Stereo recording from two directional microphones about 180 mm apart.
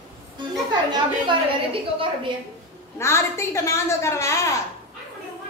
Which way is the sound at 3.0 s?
15° left (ahead or behind).